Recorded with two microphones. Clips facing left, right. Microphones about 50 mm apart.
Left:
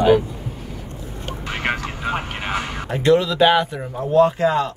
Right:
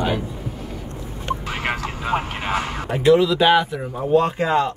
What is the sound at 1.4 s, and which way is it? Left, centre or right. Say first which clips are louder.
Vehicle: left 1 dB; centre.